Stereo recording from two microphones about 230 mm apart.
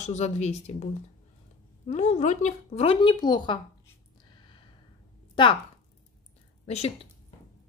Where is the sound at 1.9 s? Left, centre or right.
Left.